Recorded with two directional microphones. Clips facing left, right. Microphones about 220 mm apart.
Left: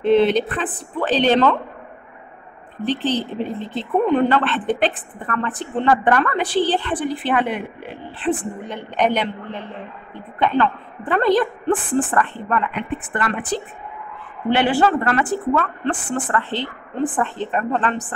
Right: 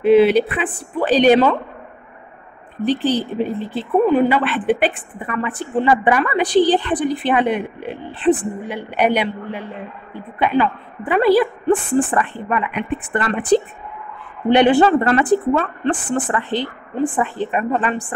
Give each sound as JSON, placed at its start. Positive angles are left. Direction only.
{"t": 0.0, "sound": "speech", "side_deg": -10}
{"t": 2.8, "sound": "a woman's voice", "side_deg": -10}